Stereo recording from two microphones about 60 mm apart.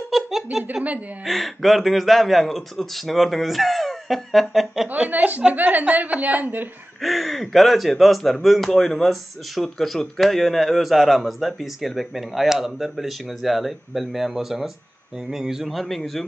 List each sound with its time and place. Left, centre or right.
0.1 s a sound: centre
1.2 s speech: centre
4.8 s a woman's voice: right
7.0 s speech: centre